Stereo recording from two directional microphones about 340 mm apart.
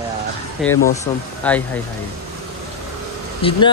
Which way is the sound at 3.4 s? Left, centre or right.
Centre.